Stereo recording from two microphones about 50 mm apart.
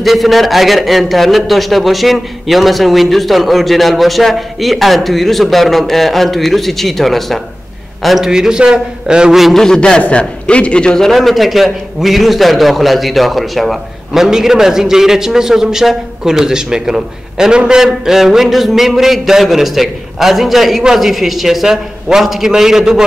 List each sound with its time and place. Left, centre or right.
0.0 s a man's voice: centre
9.4 s a man's voice: centre
9.7 s a man's voice: centre
11.1 s a man's voice: centre